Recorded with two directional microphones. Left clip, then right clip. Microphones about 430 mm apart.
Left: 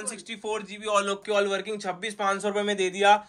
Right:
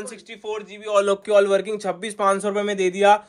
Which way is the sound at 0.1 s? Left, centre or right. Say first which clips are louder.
Right 1 dB; centre.